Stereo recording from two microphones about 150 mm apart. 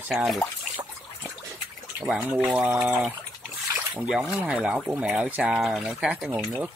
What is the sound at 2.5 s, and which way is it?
Speech, 10° right (ahead or behind).